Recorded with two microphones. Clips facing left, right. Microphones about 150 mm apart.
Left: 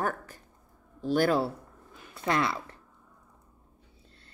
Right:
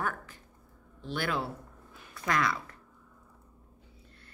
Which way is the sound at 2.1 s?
25° left (ahead or behind).